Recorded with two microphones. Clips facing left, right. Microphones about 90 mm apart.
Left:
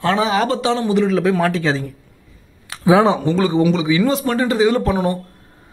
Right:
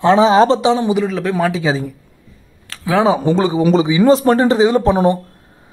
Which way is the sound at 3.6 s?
40° right (ahead or behind).